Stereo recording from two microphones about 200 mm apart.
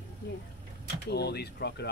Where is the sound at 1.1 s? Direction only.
55° left (ahead or behind).